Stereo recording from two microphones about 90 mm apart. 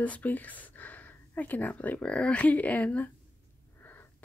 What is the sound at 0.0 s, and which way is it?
Speech, 15° left (ahead or behind).